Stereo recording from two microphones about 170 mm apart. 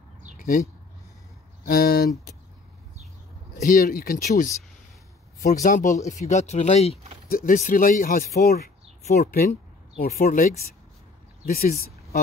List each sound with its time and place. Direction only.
0.4 s a sound: 50° left (ahead or behind)
1.7 s speech: 65° left (ahead or behind)
3.5 s speech: 50° left (ahead or behind)
5.4 s speech: 45° left (ahead or behind)
7.2 s speech: 55° left (ahead or behind)
9.0 s speech: 40° left (ahead or behind)
9.3 s speech: 60° left (ahead or behind)